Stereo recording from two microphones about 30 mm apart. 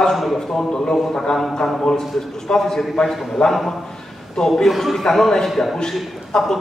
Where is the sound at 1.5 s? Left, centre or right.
Centre.